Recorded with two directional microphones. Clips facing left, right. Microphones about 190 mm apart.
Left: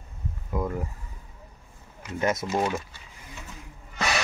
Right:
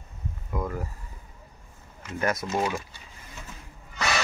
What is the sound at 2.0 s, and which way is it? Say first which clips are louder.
Speech: left 1 dB; 20° left (ahead or behind).